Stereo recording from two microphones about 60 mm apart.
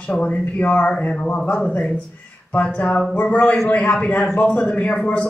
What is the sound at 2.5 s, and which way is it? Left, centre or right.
Speech, left.